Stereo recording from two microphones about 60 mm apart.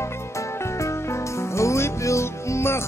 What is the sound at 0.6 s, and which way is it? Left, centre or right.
Music, left.